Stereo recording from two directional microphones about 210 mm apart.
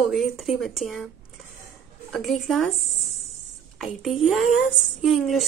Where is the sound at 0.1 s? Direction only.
Centre (ahead or behind).